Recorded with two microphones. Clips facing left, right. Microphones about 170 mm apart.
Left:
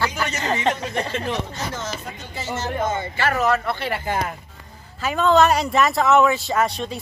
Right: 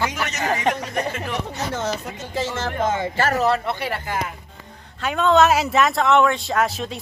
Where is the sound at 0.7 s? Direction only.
10° right (ahead or behind).